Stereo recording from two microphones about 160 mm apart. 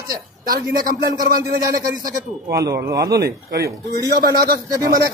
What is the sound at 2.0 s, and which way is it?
Speech, 80° right.